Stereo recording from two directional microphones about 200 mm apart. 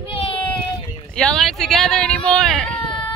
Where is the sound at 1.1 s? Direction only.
Centre (ahead or behind).